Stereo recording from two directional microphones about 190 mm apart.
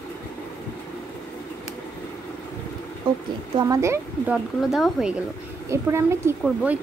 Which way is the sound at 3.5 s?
15° right (ahead or behind).